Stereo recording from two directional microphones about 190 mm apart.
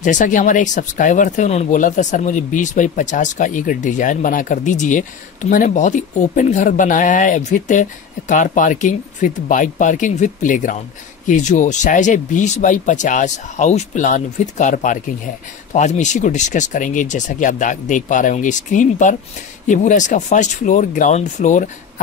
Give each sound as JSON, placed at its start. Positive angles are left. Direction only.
{"t": 0.0, "sound": "speech", "side_deg": 40}